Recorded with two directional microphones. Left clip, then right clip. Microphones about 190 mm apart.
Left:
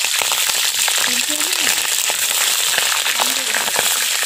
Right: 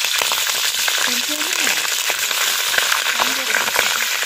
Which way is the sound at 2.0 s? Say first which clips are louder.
Even; 35° left (ahead or behind).